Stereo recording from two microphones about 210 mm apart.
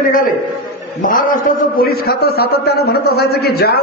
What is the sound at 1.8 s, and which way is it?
A man's voice, 50° left (ahead or behind).